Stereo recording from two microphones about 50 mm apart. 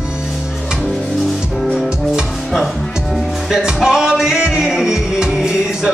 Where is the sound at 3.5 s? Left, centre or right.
Centre.